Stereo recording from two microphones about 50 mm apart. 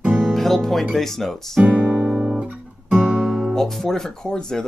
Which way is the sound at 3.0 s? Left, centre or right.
Centre.